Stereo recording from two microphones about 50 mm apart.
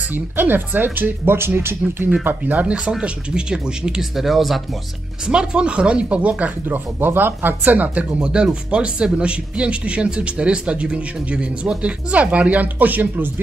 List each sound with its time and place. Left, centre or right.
0.1 s speech: right
2.2 s speech: right; by 4.0 s centre
4.2 s speech: centre
5.2 s speech: centre; by 13.3 s right